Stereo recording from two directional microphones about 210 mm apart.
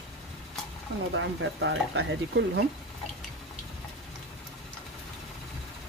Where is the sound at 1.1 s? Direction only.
60° right (ahead or behind).